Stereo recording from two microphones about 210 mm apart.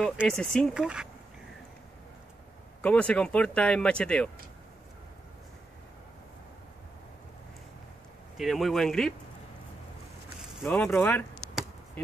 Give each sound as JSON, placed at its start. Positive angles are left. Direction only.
{"t": 0.0, "sound": "speech", "side_deg": 0}
{"t": 2.8, "sound": "speech", "side_deg": 5}
{"t": 8.4, "sound": "speech", "side_deg": 0}
{"t": 10.6, "sound": "speech", "side_deg": 10}